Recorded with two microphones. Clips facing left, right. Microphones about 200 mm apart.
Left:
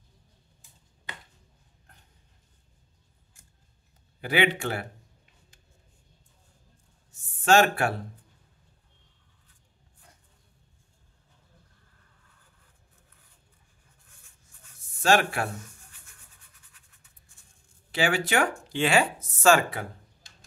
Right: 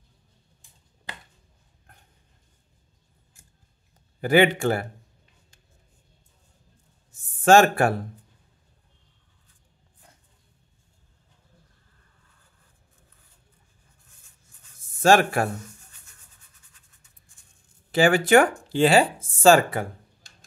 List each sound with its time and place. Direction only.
4.2 s a man's voice: 45° right (ahead or behind)
7.4 s a man's voice: 50° right (ahead or behind)
15.0 s speech: 45° right (ahead or behind)
17.9 s a man's voice: 50° right (ahead or behind)
18.7 s speech: 35° right (ahead or behind)
19.7 s a sound: 45° right (ahead or behind)